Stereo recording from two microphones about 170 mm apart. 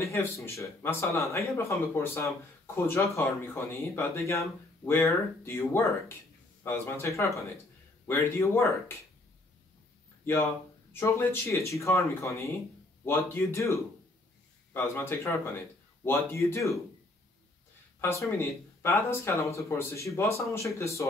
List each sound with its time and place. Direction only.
0.0 s speech: 15° left (ahead or behind)
10.2 s speech: 15° left (ahead or behind)
18.4 s speech: 15° left (ahead or behind)